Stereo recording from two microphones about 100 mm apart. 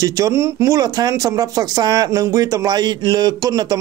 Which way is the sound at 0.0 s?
30° right (ahead or behind).